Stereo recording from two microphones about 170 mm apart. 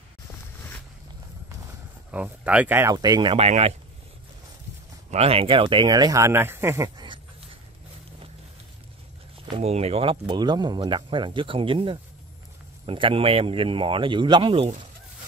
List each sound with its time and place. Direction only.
2.0 s speech: 10° right (ahead or behind); by 3.3 s 25° right (ahead or behind)
3.3 s speech: 40° right (ahead or behind)
5.1 s speech: 35° right (ahead or behind); by 7.1 s 15° right (ahead or behind)
9.6 s speech: 40° right (ahead or behind)